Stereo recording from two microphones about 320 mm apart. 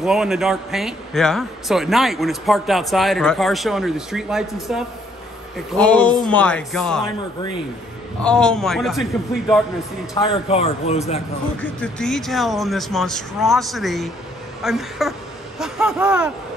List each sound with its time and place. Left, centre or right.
0.0 s a man's voice: centre
8.2 s a man's voice: centre
10.1 s a man's voice: centre
11.6 s a man's voice: centre